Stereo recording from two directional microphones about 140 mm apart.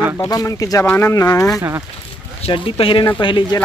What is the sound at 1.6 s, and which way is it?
Speech, 20° right (ahead or behind).